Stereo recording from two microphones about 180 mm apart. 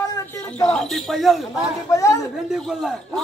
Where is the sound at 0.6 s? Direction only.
Centre (ahead or behind).